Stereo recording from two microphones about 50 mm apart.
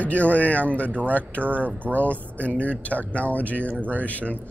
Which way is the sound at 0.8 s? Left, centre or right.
Right.